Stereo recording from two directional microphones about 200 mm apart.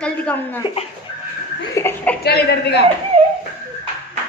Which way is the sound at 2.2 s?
55° left (ahead or behind).